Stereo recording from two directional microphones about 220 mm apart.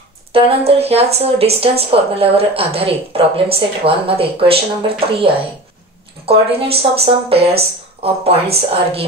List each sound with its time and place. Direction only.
0.3 s a woman's voice: 25° right (ahead or behind)